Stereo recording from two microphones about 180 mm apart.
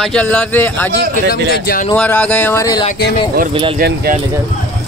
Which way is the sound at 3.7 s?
55° right (ahead or behind).